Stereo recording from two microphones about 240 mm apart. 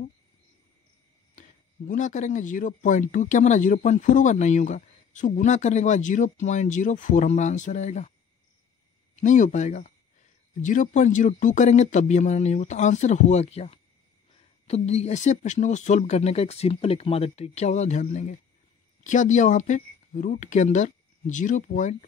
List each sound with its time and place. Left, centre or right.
1.3 s speech: left
9.1 s speech: left